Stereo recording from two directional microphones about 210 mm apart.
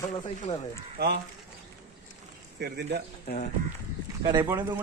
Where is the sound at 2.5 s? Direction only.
50° right (ahead or behind).